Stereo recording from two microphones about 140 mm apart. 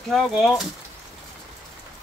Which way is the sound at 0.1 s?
Centre (ahead or behind).